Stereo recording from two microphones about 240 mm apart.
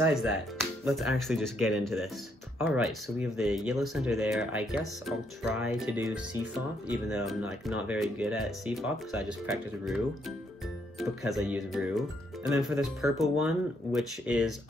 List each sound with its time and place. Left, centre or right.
0.0 s speech: centre